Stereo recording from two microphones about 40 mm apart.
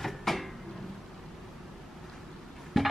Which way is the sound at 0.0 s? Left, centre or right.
Centre.